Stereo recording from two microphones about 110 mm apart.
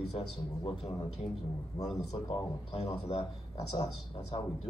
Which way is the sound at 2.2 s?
45° left (ahead or behind).